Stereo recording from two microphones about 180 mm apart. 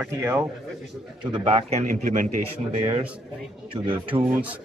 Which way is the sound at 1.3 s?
35° right (ahead or behind).